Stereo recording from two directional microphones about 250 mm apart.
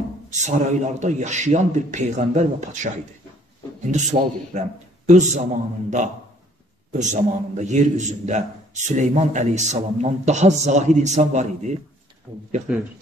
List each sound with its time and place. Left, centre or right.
0.3 s a man's voice: right
3.9 s a man's voice: right